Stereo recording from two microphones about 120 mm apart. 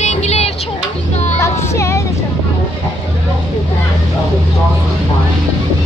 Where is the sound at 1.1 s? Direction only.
70° left (ahead or behind).